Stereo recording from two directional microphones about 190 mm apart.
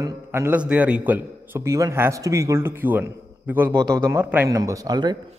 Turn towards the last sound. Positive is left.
turn(degrees=-20)  # may be behind; listen again after turning